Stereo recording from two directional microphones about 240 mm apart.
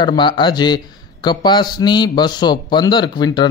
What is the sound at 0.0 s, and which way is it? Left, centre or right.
A man's voice, centre.